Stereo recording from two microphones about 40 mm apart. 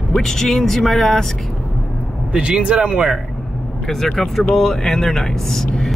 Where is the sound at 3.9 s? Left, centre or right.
Centre.